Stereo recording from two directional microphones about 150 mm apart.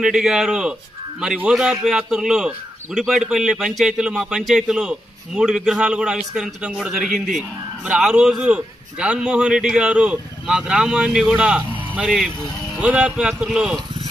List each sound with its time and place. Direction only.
0.0 s a man's voice: 5° right (ahead or behind)